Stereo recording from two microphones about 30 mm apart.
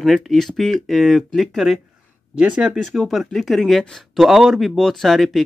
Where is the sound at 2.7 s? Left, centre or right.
Centre.